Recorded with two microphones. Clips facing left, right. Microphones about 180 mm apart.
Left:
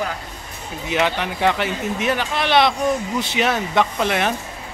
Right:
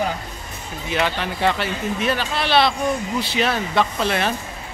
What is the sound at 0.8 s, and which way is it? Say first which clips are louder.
Speech: left 2 dB; 15° left (ahead or behind).